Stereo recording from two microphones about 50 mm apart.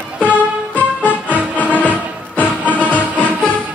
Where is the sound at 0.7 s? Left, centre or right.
Left.